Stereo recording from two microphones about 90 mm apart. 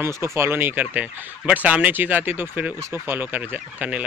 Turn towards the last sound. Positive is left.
turn(degrees=-20)  # may be behind; listen again after turning